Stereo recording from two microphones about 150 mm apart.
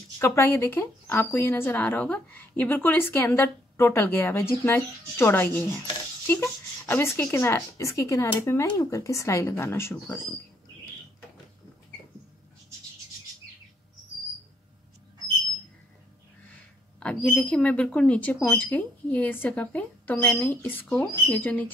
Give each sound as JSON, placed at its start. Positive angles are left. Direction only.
{"t": 0.2, "sound": "speech", "side_deg": 15}
{"t": 16.5, "sound": "a sound", "side_deg": 10}
{"t": 17.4, "sound": "speech", "side_deg": 10}